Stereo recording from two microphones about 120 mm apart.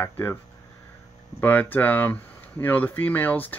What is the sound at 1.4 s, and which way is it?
Speech, 15° left (ahead or behind).